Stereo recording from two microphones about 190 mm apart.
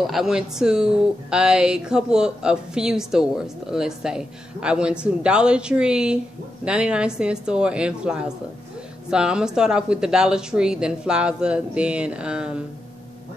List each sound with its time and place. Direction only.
0.0 s speech: centre (ahead or behind)